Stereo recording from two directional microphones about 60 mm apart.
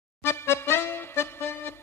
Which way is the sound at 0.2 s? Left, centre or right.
Left.